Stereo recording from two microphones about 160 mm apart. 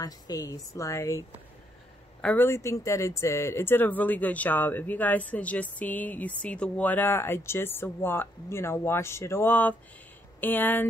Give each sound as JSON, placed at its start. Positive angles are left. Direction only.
{"t": 0.0, "sound": "a woman's voice", "side_deg": 25}
{"t": 2.2, "sound": "speech", "side_deg": 15}